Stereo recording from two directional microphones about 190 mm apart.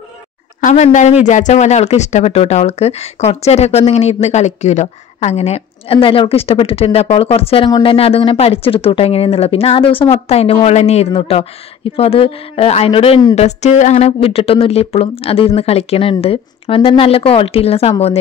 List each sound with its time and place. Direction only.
0.6 s speech: 40° left (ahead or behind)